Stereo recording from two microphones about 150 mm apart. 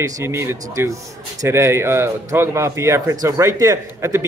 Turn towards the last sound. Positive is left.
turn(degrees=-20)  # may be behind; listen again after turning